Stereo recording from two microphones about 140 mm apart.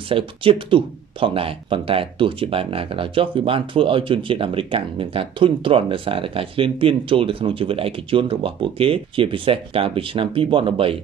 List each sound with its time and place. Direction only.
0.1 s speech: 40° right (ahead or behind)